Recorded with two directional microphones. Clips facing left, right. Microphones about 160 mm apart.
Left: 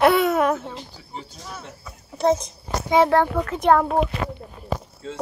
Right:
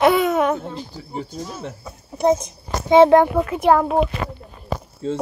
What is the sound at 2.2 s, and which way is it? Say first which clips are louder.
A child's voice: right 2 dB; 20° right (ahead or behind).